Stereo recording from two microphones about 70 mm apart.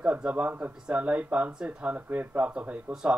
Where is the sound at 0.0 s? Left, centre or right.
Right.